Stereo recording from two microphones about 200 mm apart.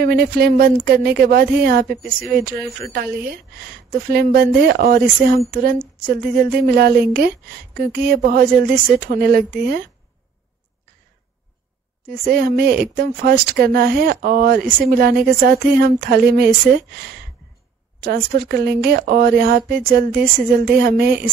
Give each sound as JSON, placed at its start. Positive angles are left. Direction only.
{"t": 0.0, "sound": "speech", "side_deg": -50}
{"t": 12.1, "sound": "speech", "side_deg": -45}
{"t": 18.0, "sound": "speech", "side_deg": -50}